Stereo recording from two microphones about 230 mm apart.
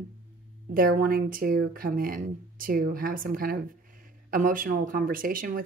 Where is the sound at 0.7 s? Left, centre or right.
Right.